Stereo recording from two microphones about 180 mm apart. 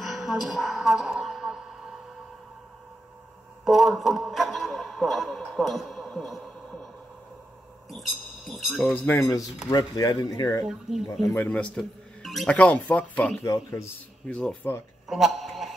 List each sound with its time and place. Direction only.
0.0 s music: centre (ahead or behind)
3.6 s a sound: centre (ahead or behind)
7.9 s speech: centre (ahead or behind); by 10.6 s 20° left (ahead or behind)
10.6 s speech: centre (ahead or behind); by 13.8 s 15° left (ahead or behind)
14.2 s a man's voice: 5° left (ahead or behind)